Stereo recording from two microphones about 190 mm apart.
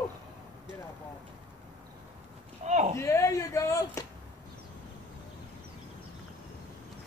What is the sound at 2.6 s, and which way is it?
Clip-clop, 35° right (ahead or behind).